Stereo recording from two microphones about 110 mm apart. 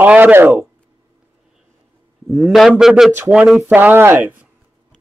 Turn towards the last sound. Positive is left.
turn(degrees=-15)  # may be behind; listen again after turning